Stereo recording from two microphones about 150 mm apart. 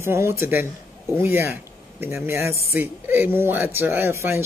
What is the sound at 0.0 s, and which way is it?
Speech, 15° right (ahead or behind).